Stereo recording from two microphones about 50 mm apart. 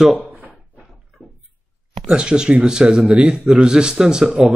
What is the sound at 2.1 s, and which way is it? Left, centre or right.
Speech, centre.